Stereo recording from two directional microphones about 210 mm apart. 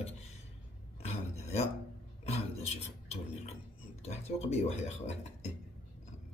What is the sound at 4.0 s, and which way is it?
Speech, 30° left (ahead or behind).